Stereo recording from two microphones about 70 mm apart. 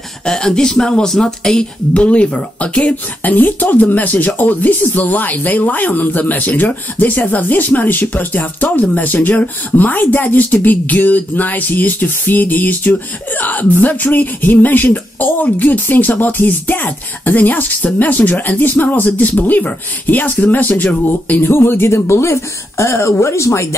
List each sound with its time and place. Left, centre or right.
0.2 s a woman's voice: centre; by 23.7 s left